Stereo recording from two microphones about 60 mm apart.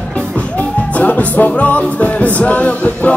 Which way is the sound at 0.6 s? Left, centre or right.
Left.